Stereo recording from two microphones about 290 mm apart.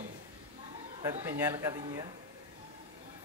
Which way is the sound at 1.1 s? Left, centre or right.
Centre.